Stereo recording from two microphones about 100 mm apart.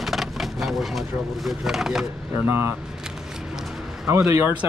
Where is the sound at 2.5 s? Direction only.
25° right (ahead or behind).